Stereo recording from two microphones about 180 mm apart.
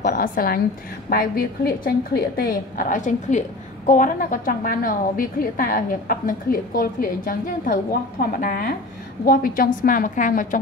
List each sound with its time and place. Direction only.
0.0 s a woman's voice: 50° left (ahead or behind)